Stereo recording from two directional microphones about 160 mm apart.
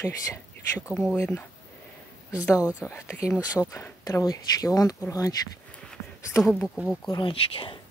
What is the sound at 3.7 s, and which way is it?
Speech, 20° left (ahead or behind).